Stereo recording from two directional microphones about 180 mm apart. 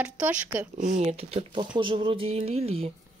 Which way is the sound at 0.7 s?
40° right (ahead or behind).